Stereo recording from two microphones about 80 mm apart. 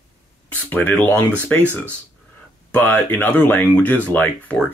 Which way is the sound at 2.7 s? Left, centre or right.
Left.